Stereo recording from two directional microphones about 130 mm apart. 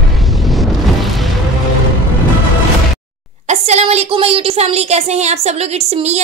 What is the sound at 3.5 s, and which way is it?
Speech, 55° right (ahead or behind).